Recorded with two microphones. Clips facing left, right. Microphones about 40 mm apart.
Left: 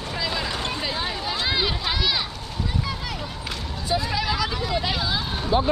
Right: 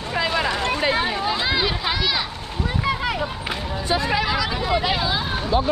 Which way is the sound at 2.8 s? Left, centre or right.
Right.